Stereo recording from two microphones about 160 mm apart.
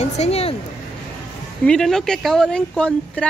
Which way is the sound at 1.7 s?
5° left (ahead or behind).